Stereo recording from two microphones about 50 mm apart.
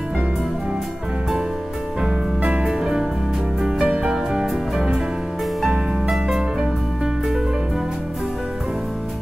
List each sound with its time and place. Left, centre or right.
2.6 s music: centre
3.8 s music: right
4.1 s music: centre
6.0 s music: centre